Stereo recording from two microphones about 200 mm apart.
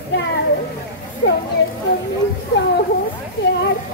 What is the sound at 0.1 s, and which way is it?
Speech, 60° left (ahead or behind).